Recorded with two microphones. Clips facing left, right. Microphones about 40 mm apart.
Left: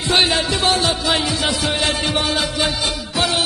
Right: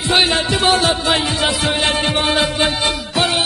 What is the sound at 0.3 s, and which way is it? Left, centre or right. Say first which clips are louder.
Music: right 2 dB; right.